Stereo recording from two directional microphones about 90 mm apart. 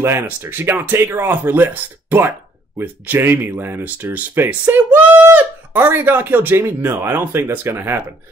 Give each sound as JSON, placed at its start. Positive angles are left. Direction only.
{"t": 0.0, "sound": "speech", "side_deg": -30}